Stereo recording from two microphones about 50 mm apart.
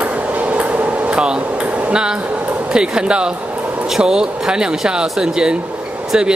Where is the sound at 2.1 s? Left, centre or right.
Right.